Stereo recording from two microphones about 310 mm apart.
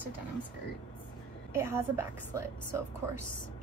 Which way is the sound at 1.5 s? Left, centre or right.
Centre.